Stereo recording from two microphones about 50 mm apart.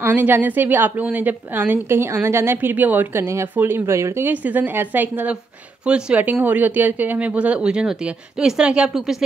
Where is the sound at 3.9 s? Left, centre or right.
Right.